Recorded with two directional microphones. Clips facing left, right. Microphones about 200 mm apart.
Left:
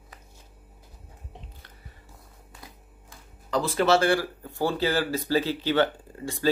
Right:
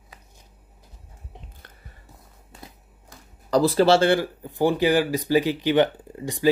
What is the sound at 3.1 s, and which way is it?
Speech, 40° right (ahead or behind).